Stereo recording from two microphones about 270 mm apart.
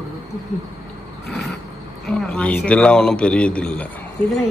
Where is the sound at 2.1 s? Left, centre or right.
Centre.